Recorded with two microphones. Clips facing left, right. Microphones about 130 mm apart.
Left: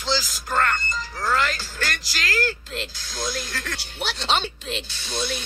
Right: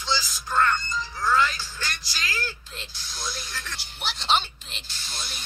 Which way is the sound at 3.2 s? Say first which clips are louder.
Left 7 dB; 90° left.